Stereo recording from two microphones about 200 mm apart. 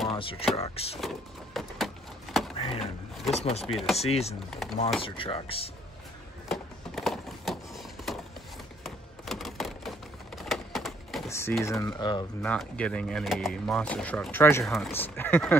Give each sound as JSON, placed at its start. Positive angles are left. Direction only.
{"t": 0.1, "sound": "speech", "side_deg": 25}
{"t": 1.0, "sound": "speech", "side_deg": 0}
{"t": 3.3, "sound": "speech", "side_deg": 30}
{"t": 3.6, "sound": "speech", "side_deg": 0}
{"t": 4.0, "sound": "speech", "side_deg": 30}
{"t": 6.5, "sound": "a sound", "side_deg": 0}
{"t": 8.8, "sound": "typewriter", "side_deg": 0}
{"t": 11.2, "sound": "typing", "side_deg": 15}
{"t": 11.6, "sound": "speech", "side_deg": 15}
{"t": 12.4, "sound": "speech", "side_deg": 5}
{"t": 14.6, "sound": "speech", "side_deg": 0}